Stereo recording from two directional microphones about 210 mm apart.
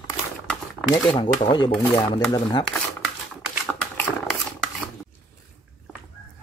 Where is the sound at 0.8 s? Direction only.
25° left (ahead or behind).